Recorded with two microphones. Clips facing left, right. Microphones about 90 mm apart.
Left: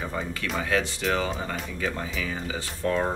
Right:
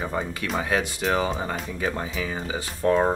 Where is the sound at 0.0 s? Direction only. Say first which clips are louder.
Right 3 dB; 20° right (ahead or behind).